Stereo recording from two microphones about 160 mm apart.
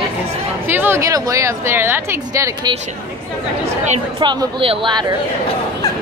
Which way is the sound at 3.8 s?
35° right (ahead or behind).